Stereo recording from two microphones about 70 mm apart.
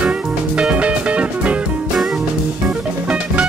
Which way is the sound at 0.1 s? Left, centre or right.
Centre.